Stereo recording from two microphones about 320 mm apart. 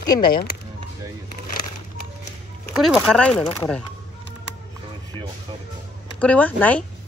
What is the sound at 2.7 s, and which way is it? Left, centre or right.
Speech, centre.